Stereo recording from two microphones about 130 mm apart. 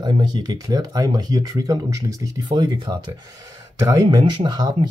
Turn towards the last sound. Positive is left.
turn(degrees=-30)  # may be behind; listen again after turning